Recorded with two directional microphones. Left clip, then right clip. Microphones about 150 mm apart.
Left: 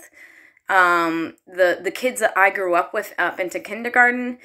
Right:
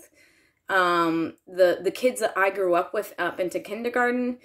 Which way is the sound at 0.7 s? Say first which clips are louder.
Left 5 dB; 45° right (ahead or behind).